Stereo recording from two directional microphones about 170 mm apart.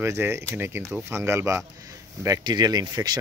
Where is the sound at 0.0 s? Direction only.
15° right (ahead or behind).